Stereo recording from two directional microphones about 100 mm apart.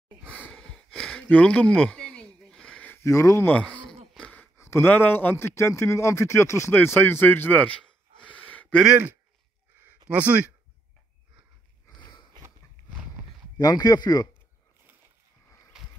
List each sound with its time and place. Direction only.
0.2 s a sound: 15° left (ahead or behind)
3.1 s speech: 30° left (ahead or behind)
3.4 s speech: 15° left (ahead or behind)
4.1 s a sound: 10° left (ahead or behind)
4.6 s a man's voice: 25° left (ahead or behind)
8.8 s speech: 15° right (ahead or behind)
12.0 s sniff: 50° left (ahead or behind)
13.6 s speech: 40° left (ahead or behind)
15.7 s a sound: 5° right (ahead or behind)